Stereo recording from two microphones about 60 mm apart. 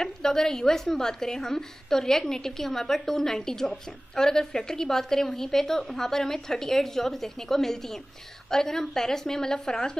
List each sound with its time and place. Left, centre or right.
0.0 s a woman's voice: centre